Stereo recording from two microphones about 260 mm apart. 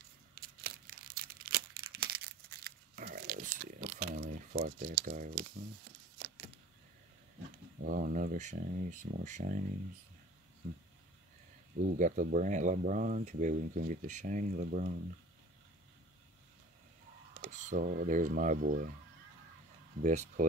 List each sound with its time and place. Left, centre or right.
0.4 s crumpling: right
7.8 s speech: right
11.8 s speech: right
17.4 s speech: right
20.0 s speech: right